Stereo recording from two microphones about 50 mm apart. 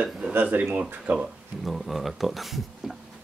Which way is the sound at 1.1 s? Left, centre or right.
Right.